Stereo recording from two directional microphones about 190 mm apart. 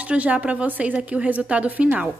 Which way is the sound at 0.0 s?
5° right (ahead or behind).